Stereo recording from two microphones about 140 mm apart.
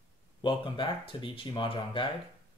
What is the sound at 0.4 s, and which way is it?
Speech, 35° left (ahead or behind).